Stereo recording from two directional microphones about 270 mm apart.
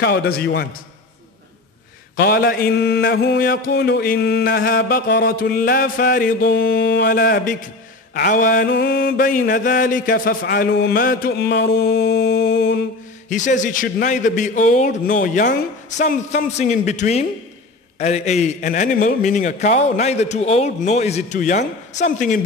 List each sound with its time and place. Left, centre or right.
0.0 s mantra: left
2.1 s mantra: left
13.3 s a man's voice: left